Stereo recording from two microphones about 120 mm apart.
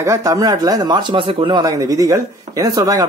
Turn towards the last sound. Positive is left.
turn(degrees=-30)  # may be behind; listen again after turning